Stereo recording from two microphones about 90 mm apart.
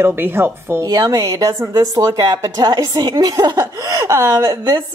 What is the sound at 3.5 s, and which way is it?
Speech, 35° right (ahead or behind).